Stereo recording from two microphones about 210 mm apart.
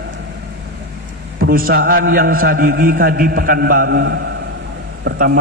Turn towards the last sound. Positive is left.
turn(degrees=-50)  # may be behind; listen again after turning